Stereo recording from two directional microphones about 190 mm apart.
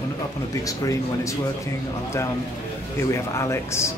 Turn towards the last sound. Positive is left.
turn(degrees=15)  # may be behind; listen again after turning